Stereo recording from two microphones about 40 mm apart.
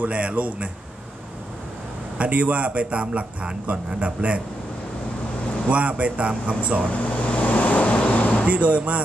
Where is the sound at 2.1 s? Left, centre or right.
Right.